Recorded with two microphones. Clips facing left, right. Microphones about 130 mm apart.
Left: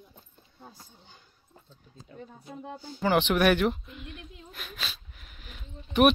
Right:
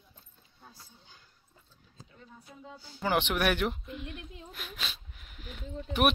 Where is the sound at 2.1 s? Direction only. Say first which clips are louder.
Left 9 dB; 55° left (ahead or behind).